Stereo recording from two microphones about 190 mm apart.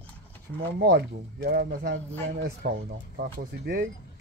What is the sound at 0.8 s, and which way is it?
Speech, 55° right (ahead or behind).